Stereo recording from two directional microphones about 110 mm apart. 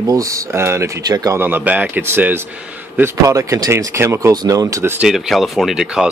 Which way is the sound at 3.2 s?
30° right (ahead or behind).